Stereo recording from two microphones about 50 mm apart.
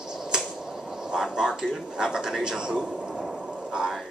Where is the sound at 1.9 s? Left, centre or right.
Centre.